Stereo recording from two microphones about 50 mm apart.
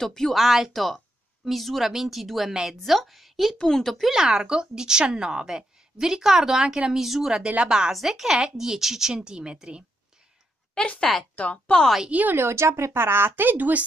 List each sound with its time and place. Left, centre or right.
0.0 s speech: centre
0.4 s a woman's voice: centre
3.5 s speech: centre
4.1 s a woman's voice: centre
10.7 s speech: centre
11.3 s speech: left
12.1 s a woman's voice: right
12.4 s speech: right